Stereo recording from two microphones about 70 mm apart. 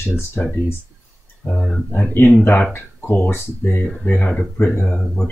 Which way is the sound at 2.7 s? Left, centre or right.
Left.